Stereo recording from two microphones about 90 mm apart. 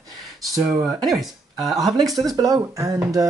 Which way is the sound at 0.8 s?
5° right (ahead or behind).